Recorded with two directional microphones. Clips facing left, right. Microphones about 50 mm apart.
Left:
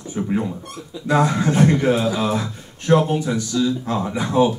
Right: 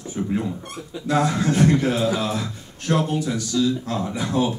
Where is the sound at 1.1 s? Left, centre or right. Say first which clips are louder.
Left 3 dB; left.